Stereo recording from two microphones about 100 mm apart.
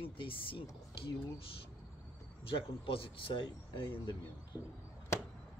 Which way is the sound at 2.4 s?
65° left (ahead or behind).